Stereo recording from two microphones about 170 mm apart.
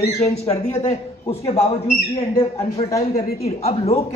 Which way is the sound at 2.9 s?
20° left (ahead or behind).